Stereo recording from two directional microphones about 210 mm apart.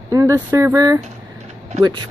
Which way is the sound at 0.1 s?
15° right (ahead or behind).